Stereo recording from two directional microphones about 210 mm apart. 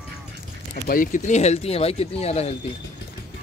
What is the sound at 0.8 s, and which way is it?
Speech, 40° left (ahead or behind).